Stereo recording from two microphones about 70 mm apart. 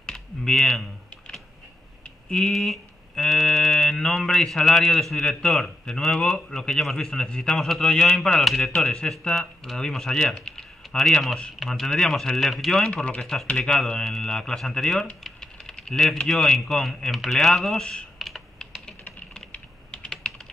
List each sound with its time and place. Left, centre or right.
0.0 s typing: centre
2.5 s a man's voice: centre
8.7 s speech: centre
12.9 s a man's voice: centre
19.5 s typing: centre